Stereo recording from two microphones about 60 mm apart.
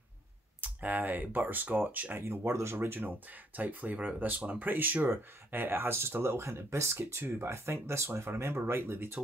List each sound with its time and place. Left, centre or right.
0.6 s speech: right
2.2 s speech: right